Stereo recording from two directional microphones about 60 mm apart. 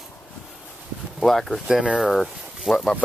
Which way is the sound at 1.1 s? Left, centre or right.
Centre.